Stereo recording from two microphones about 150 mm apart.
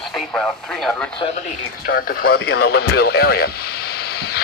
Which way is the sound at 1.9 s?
85° left.